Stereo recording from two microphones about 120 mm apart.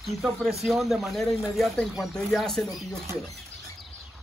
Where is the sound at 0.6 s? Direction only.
Centre (ahead or behind).